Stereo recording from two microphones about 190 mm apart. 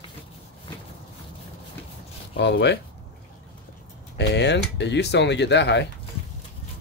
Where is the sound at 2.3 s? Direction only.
65° left (ahead or behind).